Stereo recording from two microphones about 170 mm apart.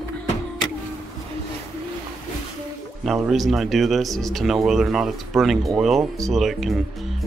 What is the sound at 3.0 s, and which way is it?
Speech, 5° right (ahead or behind).